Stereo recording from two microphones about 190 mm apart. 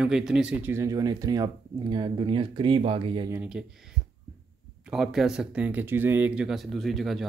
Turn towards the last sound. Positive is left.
turn(degrees=0)  # may be behind; listen again after turning